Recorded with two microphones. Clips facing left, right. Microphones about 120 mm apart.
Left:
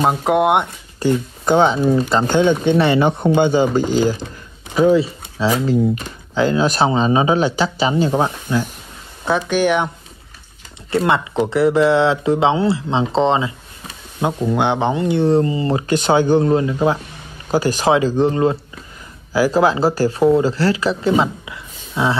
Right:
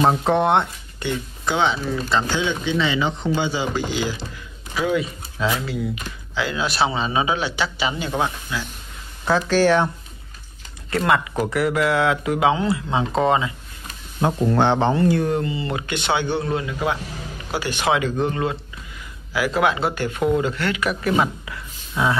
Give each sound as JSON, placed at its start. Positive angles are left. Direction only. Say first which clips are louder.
{"t": 0.0, "sound": "speech", "louder": "left 2 dB", "side_deg": 10}
{"t": 0.9, "sound": "speech", "louder": "left 9 dB", "side_deg": 45}
{"t": 1.8, "sound": "speech", "louder": "left 10 dB", "side_deg": 25}
{"t": 2.0, "sound": "speech", "louder": "left 7 dB", "side_deg": 45}
{"t": 4.7, "sound": "speech", "louder": "left 8 dB", "side_deg": 35}
{"t": 9.2, "sound": "speech", "louder": "left 1 dB", "side_deg": 20}
{"t": 11.1, "sound": "speech", "louder": "left 1 dB", "side_deg": 25}
{"t": 14.4, "sound": "speech", "louder": "even", "side_deg": 10}